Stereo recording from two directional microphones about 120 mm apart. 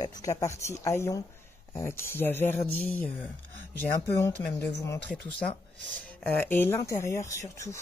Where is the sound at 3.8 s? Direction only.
25° left (ahead or behind).